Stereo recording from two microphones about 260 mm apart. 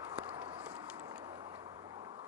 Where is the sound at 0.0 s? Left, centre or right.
Centre.